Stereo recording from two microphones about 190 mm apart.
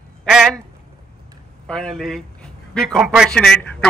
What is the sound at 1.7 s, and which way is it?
A man's voice, centre (ahead or behind).